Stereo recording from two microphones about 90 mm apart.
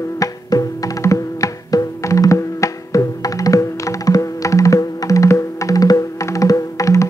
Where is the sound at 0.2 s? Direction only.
40° left (ahead or behind).